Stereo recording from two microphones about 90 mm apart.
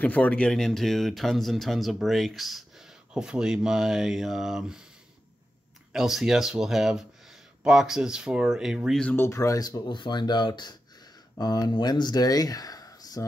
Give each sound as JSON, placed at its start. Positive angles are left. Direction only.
{"t": 0.0, "sound": "speech", "side_deg": 15}
{"t": 5.9, "sound": "speech", "side_deg": -5}
{"t": 9.1, "sound": "speech", "side_deg": 30}